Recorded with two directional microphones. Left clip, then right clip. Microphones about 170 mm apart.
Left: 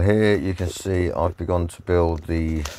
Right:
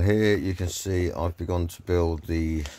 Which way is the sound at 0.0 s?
20° left (ahead or behind).